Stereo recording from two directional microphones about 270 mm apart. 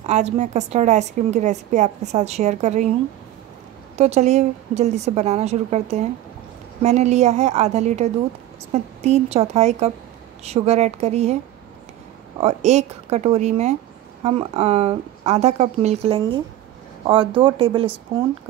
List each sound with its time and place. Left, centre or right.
0.0 s a woman's voice: right
4.0 s a woman's voice: right
12.4 s a woman's voice: right